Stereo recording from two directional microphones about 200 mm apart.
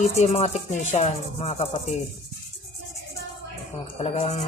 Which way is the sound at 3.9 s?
35° left (ahead or behind).